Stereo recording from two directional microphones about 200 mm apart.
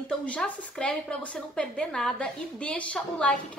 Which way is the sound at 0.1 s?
5° left (ahead or behind).